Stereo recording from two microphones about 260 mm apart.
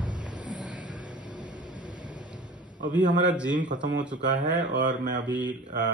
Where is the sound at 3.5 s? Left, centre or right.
Right.